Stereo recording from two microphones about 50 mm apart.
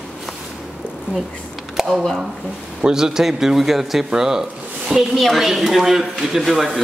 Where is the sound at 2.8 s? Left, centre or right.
Centre.